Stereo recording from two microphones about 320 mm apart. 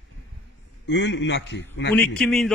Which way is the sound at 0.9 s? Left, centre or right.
Left.